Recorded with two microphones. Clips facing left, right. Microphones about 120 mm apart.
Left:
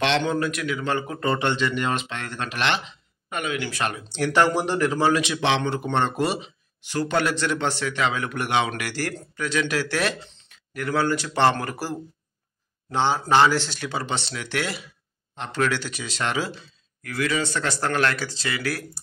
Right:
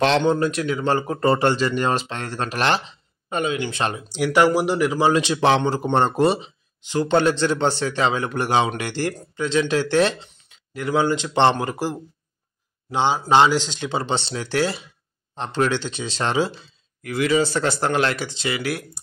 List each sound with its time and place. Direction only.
0.2 s a man's voice: 30° right (ahead or behind)
4.1 s speech: 10° right (ahead or behind)
5.1 s a man's voice: 30° right (ahead or behind)